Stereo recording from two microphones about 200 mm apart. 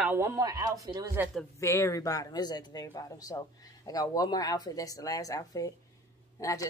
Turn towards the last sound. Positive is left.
turn(degrees=15)  # may be behind; listen again after turning